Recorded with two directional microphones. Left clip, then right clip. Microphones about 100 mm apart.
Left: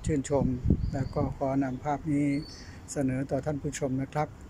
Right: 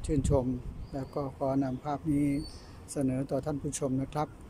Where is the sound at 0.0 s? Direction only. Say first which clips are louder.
Left 1 dB; 30° right (ahead or behind).